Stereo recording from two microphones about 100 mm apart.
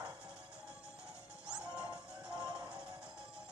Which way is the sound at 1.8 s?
10° right (ahead or behind).